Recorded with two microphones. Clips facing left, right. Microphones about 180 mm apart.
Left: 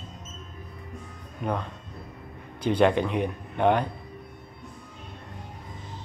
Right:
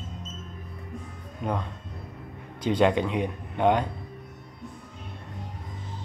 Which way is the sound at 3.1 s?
15° right (ahead or behind).